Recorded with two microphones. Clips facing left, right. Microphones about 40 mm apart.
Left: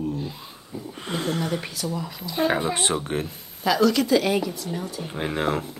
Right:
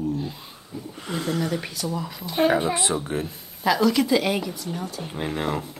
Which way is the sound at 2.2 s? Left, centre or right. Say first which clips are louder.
Right 3 dB; right.